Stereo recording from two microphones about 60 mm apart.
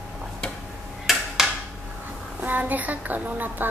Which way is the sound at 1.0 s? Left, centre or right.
Centre.